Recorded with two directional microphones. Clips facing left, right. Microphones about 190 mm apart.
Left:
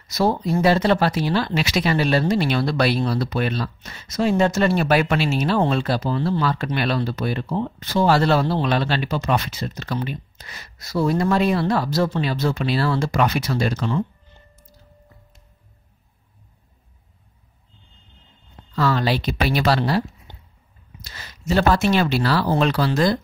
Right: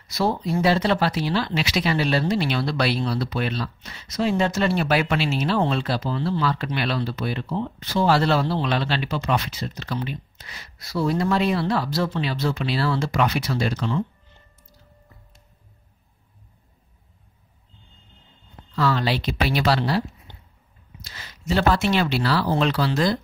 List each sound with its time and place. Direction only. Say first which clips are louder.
0.1 s speech: left 3 dB; 45° left (ahead or behind)
18.8 s speech: left 2 dB; 45° left (ahead or behind)
21.0 s speech: left 2 dB; 45° left (ahead or behind)